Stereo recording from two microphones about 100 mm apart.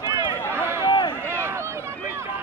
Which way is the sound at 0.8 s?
50° left (ahead or behind).